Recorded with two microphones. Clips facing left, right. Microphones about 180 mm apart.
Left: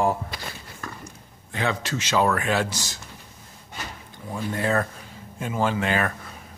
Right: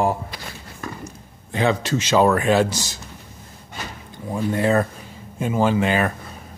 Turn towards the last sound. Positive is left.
turn(degrees=-20)  # may be behind; listen again after turning